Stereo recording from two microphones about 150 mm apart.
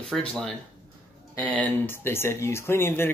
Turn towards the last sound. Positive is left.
turn(degrees=15)  # may be behind; listen again after turning